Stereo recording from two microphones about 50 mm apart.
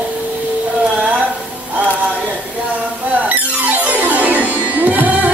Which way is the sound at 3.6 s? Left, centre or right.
Right.